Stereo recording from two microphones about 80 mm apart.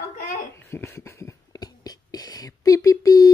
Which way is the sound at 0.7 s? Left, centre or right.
Left.